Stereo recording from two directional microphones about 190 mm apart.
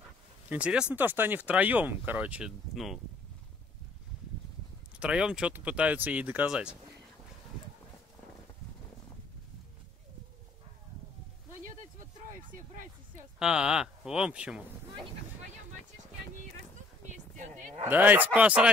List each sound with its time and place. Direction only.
0.5 s speech: 5° right (ahead or behind)
5.0 s speech: 5° right (ahead or behind)
13.4 s speech: 5° right (ahead or behind)
17.0 s a sound: 40° right (ahead or behind)
17.8 s speech: 10° right (ahead or behind)